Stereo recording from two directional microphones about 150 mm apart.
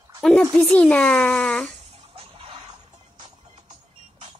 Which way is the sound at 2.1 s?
40° right (ahead or behind).